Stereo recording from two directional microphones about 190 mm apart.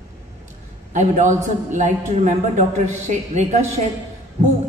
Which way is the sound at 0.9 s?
40° right (ahead or behind).